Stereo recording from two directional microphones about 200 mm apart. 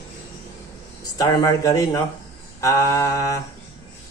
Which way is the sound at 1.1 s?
15° left (ahead or behind).